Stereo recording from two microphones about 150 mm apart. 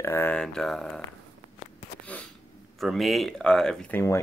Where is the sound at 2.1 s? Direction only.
10° left (ahead or behind).